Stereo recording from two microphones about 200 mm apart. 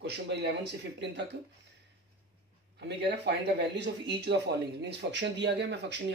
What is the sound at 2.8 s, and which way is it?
Speech, 60° right (ahead or behind).